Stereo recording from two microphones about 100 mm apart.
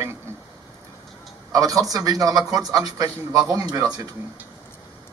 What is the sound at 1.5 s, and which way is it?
A man's voice, 35° right (ahead or behind).